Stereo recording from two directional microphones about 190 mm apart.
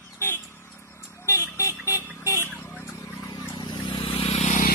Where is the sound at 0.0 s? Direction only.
10° left (ahead or behind).